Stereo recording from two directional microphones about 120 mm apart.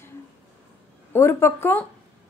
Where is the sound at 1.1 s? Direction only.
20° left (ahead or behind).